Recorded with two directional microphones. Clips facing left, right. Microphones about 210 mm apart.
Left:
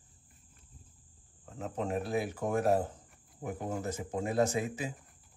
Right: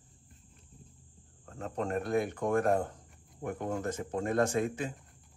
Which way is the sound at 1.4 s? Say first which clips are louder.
Right 1 dB; 5° left (ahead or behind).